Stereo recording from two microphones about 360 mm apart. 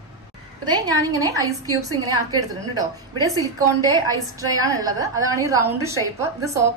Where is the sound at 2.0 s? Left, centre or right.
Centre.